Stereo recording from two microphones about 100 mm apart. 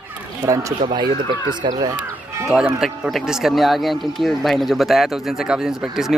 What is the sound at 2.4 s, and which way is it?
Speech, 5° right (ahead or behind).